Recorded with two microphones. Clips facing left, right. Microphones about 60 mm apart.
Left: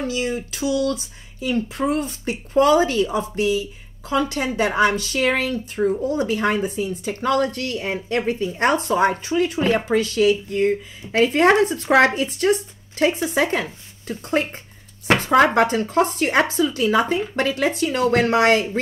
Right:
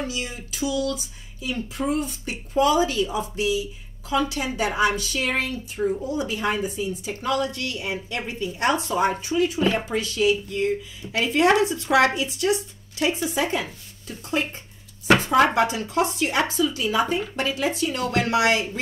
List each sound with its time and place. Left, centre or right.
0.1 s speech: left
5.5 s speech: left
17.9 s speech: left